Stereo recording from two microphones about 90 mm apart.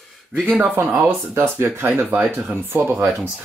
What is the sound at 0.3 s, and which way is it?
Speech, 15° right (ahead or behind).